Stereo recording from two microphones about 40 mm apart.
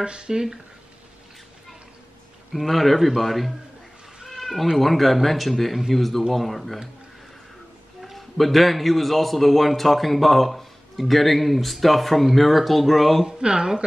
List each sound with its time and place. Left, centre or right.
0.0 s speech: right
2.5 s a man's voice: centre
8.0 s a man's voice: centre
13.3 s speech: centre